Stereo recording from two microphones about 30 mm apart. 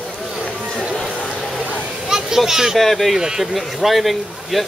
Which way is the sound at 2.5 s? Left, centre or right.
Centre.